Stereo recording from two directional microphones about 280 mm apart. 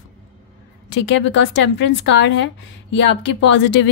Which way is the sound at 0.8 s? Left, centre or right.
Left.